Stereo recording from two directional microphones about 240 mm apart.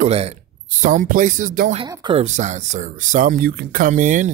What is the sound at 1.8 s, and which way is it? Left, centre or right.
Speech, centre.